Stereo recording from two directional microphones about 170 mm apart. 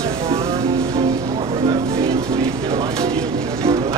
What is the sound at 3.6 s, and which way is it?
Music, 20° right (ahead or behind).